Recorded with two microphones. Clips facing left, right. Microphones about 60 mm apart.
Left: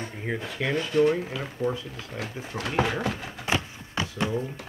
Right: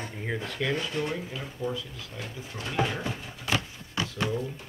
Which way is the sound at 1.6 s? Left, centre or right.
Left.